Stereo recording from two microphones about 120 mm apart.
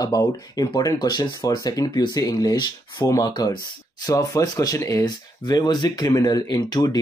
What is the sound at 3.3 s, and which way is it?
Speech, 35° left (ahead or behind).